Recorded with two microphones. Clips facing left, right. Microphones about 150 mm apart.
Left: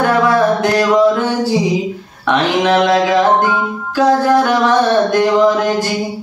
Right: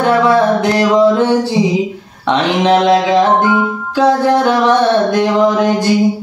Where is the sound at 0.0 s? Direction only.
25° right (ahead or behind).